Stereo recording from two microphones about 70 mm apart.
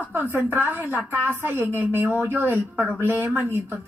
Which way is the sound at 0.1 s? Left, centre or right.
Right.